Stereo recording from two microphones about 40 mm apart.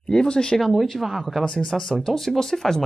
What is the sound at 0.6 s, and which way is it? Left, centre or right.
Speech, centre.